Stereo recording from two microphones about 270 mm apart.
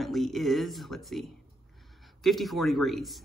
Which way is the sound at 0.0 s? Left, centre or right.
Centre.